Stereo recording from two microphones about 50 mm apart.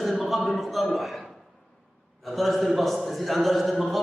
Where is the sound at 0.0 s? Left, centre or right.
Centre.